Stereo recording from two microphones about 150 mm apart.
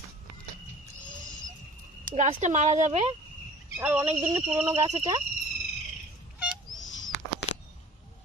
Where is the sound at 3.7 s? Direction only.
10° right (ahead or behind).